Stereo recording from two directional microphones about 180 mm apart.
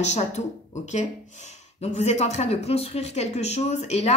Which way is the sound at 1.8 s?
40° left (ahead or behind).